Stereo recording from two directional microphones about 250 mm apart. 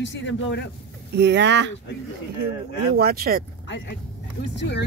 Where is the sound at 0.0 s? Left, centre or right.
Left.